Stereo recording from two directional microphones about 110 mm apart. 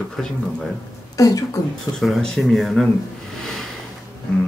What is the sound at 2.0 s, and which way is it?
Speech, 5° left (ahead or behind).